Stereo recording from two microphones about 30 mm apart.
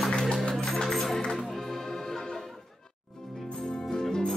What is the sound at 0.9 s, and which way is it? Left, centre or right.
Music, centre.